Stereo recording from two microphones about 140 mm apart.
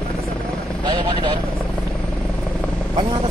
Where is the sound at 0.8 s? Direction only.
35° right (ahead or behind).